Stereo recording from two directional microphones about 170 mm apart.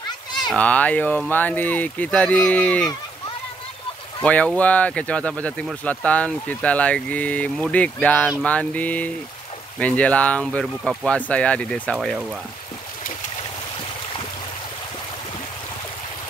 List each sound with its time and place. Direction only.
0.3 s speech: 5° left (ahead or behind)
4.2 s speech: 10° left (ahead or behind)